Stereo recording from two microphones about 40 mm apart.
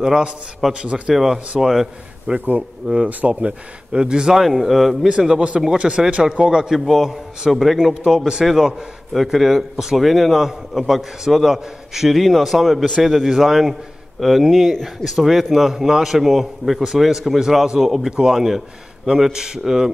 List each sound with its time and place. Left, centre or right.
0.0 s a man's voice: centre
1.1 s a man's voice: centre
2.4 s speech: right
4.0 s a man's voice: centre
4.4 s a man's voice: centre
5.0 s a man's voice: centre
5.8 s speech: right
6.4 s speech: centre
6.7 s a man's voice: centre
9.1 s a man's voice: centre